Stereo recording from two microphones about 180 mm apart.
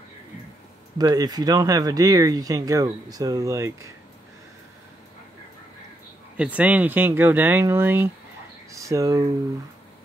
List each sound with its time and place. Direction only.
0.9 s speech: 20° right (ahead or behind)
6.3 s speech: 5° right (ahead or behind)